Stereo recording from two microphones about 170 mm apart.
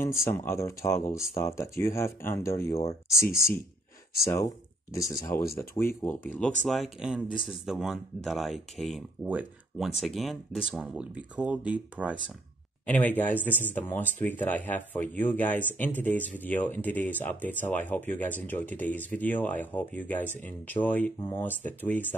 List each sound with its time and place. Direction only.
0.0 s speech: 15° left (ahead or behind)
6.7 s speech: centre (ahead or behind)
12.8 s speech: 10° left (ahead or behind)